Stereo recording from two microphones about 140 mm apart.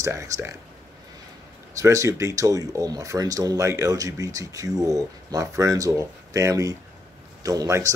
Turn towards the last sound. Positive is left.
turn(degrees=-25)  # may be behind; listen again after turning